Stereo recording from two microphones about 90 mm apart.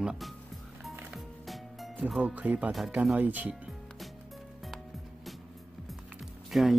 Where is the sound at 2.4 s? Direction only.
15° right (ahead or behind).